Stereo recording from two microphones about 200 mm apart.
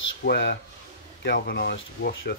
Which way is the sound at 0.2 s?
55° left (ahead or behind).